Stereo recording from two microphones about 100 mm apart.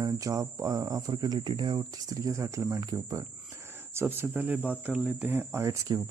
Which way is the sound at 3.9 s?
20° right (ahead or behind).